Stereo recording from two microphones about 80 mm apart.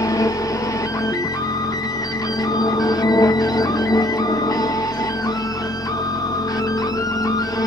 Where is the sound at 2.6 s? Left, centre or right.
Left.